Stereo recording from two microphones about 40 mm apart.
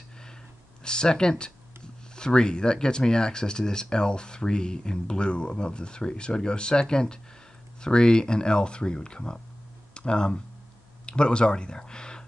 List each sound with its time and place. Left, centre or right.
0.8 s speech: centre